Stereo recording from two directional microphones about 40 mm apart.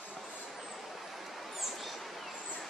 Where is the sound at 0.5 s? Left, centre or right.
Centre.